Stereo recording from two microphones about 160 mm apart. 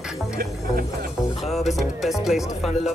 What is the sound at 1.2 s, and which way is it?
Speech, centre (ahead or behind).